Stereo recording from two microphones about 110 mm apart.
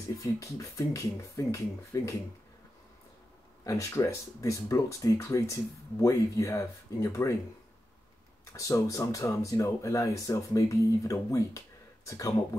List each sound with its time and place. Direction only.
0.2 s speech: 30° left (ahead or behind)
3.6 s speech: 30° left (ahead or behind)
8.5 s speech: 30° left (ahead or behind)